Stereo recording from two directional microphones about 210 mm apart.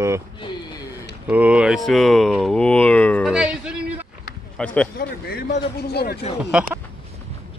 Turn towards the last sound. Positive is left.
turn(degrees=-5)  # may be behind; listen again after turning